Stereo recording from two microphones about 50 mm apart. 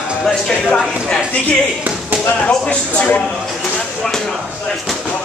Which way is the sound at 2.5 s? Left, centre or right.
Centre.